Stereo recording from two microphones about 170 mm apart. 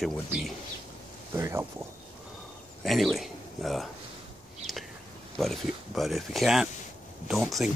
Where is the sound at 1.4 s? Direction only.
15° right (ahead or behind).